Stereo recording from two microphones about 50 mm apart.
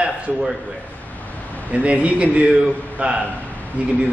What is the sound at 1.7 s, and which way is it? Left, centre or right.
Speech, right.